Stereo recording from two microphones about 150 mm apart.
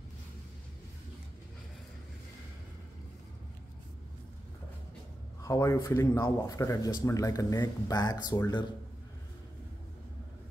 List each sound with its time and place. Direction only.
5.4 s speech: 20° left (ahead or behind)